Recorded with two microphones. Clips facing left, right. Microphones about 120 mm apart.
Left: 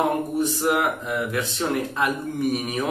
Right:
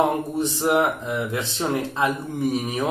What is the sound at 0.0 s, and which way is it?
Speech, 25° right (ahead or behind).